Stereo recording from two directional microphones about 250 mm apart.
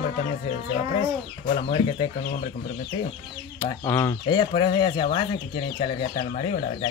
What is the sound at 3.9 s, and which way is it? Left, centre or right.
Speech, centre.